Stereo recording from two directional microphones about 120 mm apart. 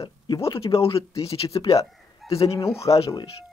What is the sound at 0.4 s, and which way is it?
Speech, 50° left (ahead or behind).